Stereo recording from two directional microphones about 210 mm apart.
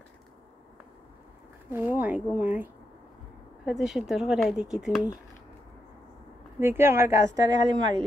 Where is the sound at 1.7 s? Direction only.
10° right (ahead or behind).